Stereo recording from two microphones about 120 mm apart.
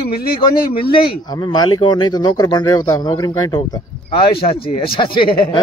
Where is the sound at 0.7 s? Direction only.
40° left (ahead or behind).